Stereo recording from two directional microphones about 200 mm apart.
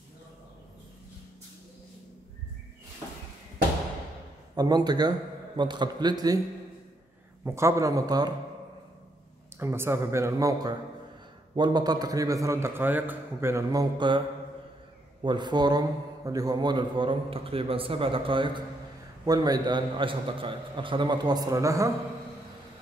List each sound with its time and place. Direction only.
4.6 s a man's voice: 20° right (ahead or behind)
7.4 s a man's voice: 15° right (ahead or behind)
9.6 s a man's voice: 10° right (ahead or behind)
15.2 s a man's voice: 20° right (ahead or behind)